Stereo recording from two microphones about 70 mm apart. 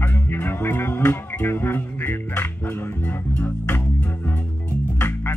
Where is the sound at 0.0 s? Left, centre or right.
Left.